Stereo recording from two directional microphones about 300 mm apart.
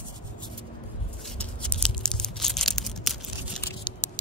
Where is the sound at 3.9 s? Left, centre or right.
Centre.